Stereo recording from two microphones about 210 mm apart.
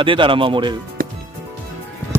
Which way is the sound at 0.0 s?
25° right (ahead or behind).